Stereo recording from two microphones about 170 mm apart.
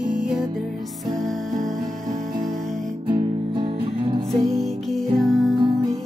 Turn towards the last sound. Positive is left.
turn(degrees=0)  # may be behind; listen again after turning